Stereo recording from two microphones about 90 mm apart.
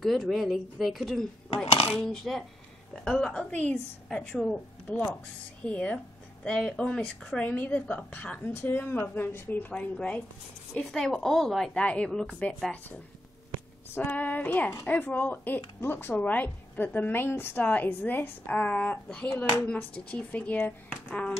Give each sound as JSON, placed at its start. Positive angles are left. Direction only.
{"t": 0.0, "sound": "a woman's voice", "side_deg": 0}
{"t": 4.3, "sound": "speech", "side_deg": 5}
{"t": 4.9, "sound": "a woman's voice", "side_deg": 15}
{"t": 13.9, "sound": "a woman's voice", "side_deg": 20}